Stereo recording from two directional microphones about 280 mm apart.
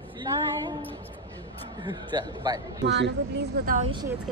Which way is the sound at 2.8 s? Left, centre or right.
Right.